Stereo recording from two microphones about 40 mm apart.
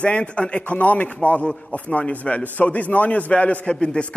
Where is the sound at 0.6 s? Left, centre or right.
Left.